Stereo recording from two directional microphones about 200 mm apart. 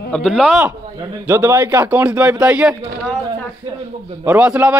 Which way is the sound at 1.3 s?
10° right (ahead or behind).